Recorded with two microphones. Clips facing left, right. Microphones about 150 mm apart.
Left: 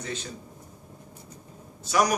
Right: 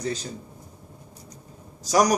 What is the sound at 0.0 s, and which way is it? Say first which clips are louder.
Speech: right 6 dB; 35° right (ahead or behind).